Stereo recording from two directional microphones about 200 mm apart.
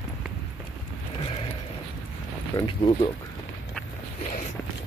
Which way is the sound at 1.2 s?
25° left (ahead or behind).